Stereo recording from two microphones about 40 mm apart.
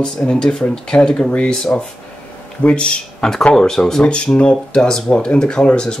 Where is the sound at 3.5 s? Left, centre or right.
Centre.